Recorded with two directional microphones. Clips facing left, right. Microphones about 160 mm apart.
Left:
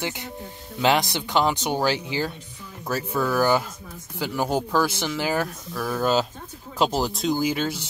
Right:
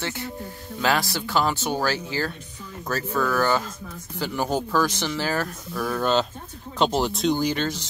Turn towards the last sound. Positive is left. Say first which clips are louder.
# even
turn(degrees=10)  # may be behind; listen again after turning